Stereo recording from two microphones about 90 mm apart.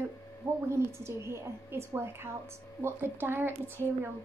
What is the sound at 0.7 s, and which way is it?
A woman's voice, 30° right (ahead or behind).